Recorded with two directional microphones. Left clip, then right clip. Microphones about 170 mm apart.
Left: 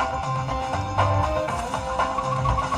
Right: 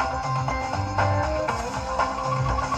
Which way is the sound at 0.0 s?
30° right (ahead or behind).